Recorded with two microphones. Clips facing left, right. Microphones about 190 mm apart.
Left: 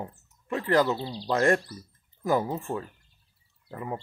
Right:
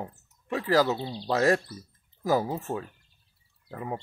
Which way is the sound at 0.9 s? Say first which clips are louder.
Even; 20° right (ahead or behind).